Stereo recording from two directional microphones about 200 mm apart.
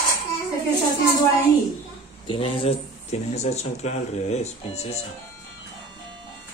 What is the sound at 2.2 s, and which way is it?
Speech, 25° left (ahead or behind).